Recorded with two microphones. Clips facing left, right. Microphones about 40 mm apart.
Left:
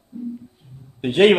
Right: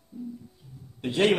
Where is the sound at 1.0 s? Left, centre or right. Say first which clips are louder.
Left 9 dB; left.